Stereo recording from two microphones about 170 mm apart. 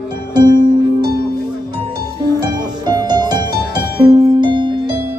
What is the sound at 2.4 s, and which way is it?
Music, 25° right (ahead or behind).